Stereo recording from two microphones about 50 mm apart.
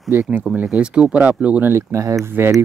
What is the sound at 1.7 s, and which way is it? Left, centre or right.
Speech, right.